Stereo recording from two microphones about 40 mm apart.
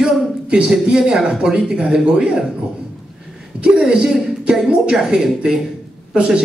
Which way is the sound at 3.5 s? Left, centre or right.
Right.